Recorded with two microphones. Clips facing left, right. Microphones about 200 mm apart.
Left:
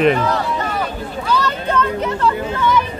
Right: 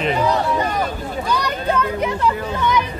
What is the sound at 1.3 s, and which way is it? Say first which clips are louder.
Children playing: left 2 dB; 15° right (ahead or behind).